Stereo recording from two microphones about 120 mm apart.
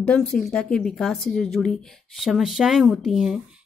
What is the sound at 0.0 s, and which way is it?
A woman's voice, 5° left (ahead or behind).